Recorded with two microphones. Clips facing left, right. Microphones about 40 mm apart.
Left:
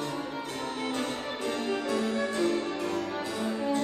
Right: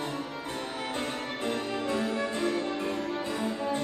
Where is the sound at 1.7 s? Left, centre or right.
Right.